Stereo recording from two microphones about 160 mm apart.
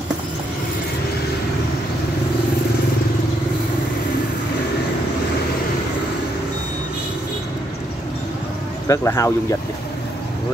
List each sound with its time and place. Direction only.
8.8 s speech: 20° left (ahead or behind)